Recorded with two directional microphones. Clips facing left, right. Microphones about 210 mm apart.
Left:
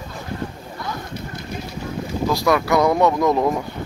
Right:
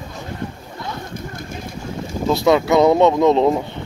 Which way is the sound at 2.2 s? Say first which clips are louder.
Right 4 dB; 25° right (ahead or behind).